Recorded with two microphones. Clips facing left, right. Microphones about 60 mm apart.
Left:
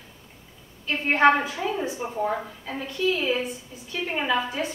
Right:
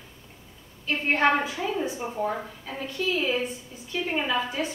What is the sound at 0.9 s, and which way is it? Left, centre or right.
A woman's voice, centre.